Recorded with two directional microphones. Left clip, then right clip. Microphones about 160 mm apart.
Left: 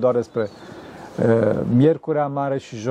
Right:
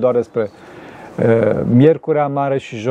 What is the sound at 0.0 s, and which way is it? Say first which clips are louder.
Speech: right 4 dB; 20° right (ahead or behind).